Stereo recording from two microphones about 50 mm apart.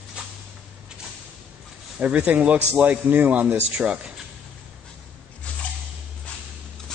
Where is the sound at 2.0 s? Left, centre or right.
Right.